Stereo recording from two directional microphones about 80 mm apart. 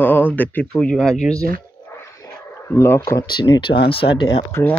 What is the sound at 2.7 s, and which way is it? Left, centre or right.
Speech, left.